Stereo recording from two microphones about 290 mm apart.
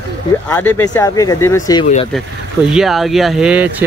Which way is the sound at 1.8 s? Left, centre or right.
Left.